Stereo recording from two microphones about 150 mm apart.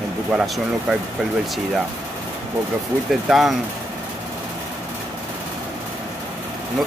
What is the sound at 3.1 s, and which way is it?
Speech, centre (ahead or behind).